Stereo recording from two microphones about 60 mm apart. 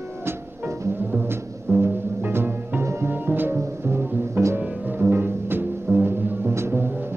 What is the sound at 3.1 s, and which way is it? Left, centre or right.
Music, right.